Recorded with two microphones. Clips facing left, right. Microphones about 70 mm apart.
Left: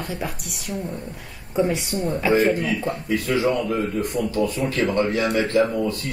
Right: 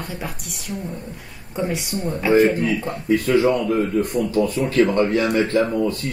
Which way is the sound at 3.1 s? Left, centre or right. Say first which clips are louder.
Right 6 dB; right.